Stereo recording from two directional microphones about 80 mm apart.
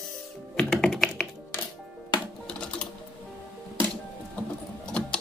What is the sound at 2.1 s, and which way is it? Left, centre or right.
Music, left.